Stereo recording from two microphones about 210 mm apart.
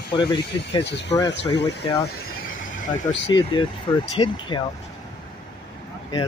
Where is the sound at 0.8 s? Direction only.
55° left (ahead or behind).